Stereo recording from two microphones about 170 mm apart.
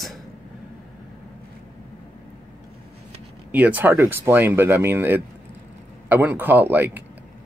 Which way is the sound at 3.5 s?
10° right (ahead or behind).